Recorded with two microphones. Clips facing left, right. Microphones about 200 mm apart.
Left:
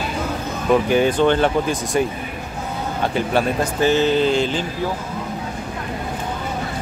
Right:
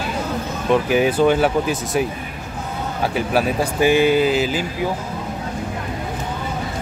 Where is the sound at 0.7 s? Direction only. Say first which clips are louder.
Left 1 dB; 5° right (ahead or behind).